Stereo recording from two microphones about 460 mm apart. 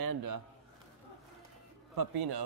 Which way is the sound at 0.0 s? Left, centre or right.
Right.